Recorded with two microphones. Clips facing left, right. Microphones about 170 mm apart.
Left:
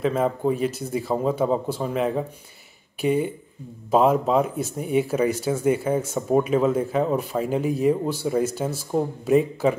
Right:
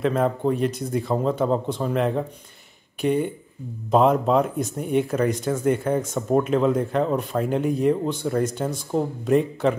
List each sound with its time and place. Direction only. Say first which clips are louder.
0.0 s speech: right 1 dB; 5° left (ahead or behind)